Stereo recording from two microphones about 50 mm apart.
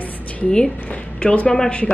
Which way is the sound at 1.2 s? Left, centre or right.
Left.